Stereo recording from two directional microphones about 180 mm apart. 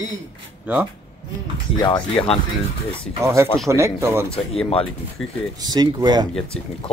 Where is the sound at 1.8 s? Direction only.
25° left (ahead or behind).